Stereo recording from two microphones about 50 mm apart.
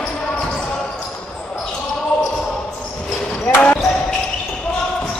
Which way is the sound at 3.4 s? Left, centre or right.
Left.